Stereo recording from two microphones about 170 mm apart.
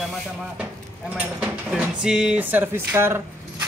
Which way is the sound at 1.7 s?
5° right (ahead or behind).